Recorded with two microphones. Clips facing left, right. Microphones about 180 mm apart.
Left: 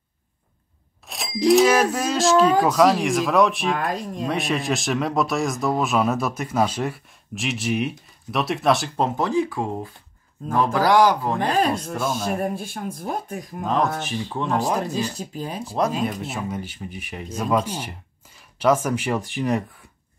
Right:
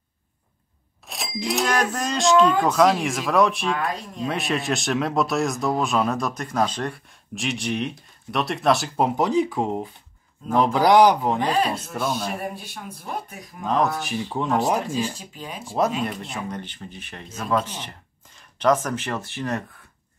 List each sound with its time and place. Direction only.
1.0 s speech: centre (ahead or behind)
3.9 s speech: 45° left (ahead or behind)
4.3 s a man's voice: centre (ahead or behind); by 11.4 s 15° right (ahead or behind)
11.9 s speech: centre (ahead or behind)
12.4 s speech: 45° left (ahead or behind)
13.7 s speech: centre (ahead or behind)
14.3 s a man's voice: 15° right (ahead or behind)
15.1 s speech: 40° left (ahead or behind)
16.0 s speech: centre (ahead or behind)